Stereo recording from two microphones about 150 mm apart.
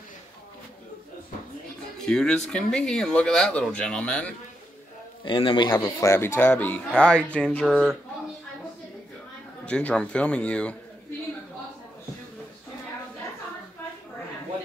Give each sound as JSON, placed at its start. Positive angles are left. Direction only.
{"t": 2.0, "sound": "speech", "side_deg": 5}
{"t": 5.2, "sound": "speech", "side_deg": 35}
{"t": 9.7, "sound": "speech", "side_deg": 5}